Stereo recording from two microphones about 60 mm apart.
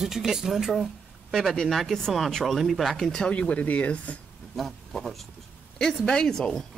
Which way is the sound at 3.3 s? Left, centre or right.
Left.